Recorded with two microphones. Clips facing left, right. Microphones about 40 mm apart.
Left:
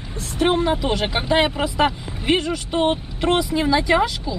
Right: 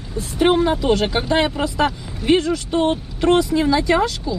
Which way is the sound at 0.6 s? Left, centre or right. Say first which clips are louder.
Right 3 dB; centre.